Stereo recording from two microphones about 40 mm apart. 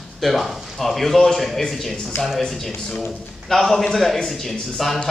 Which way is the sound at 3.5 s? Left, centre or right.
Centre.